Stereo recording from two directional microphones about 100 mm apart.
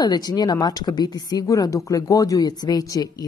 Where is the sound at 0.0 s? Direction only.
45° left (ahead or behind).